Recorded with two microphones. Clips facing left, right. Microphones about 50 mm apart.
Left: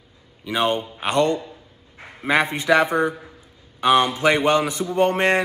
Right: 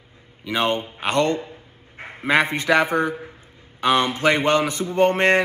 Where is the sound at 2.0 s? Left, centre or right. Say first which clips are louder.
Right 4 dB; right.